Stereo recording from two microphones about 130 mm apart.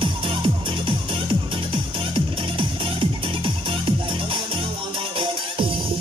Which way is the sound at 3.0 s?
40° right (ahead or behind).